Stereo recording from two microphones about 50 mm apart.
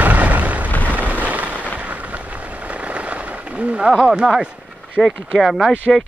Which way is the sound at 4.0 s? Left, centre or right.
Centre.